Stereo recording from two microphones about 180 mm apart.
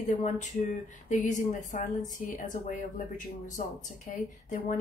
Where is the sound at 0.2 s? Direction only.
45° left (ahead or behind).